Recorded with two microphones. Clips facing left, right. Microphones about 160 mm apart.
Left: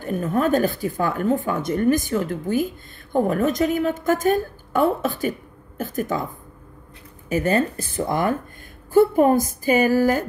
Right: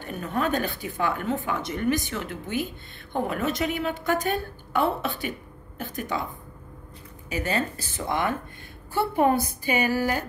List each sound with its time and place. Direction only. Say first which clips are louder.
0.0 s speech: left 6 dB; 45° left (ahead or behind)
7.2 s speech: left 7 dB; 50° left (ahead or behind)